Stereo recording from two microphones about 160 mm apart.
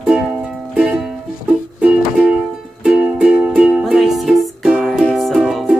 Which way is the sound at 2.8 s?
5° right (ahead or behind).